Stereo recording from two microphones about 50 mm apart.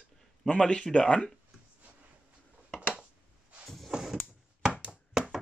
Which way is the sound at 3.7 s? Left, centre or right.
Centre.